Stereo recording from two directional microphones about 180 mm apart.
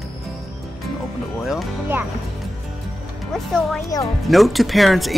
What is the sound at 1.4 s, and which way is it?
Speech, centre (ahead or behind).